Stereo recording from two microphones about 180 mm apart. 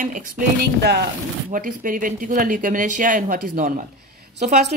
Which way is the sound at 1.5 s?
50° right (ahead or behind).